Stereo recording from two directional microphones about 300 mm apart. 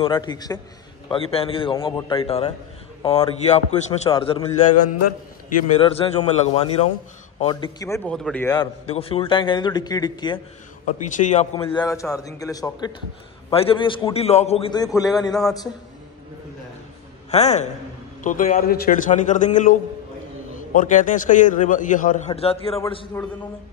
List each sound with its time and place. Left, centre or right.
0.0 s a man's voice: centre
4.6 s a man's voice: left
5.8 s a man's voice: centre
10.9 s a man's voice: left
11.5 s a man's voice: centre
17.3 s a man's voice: left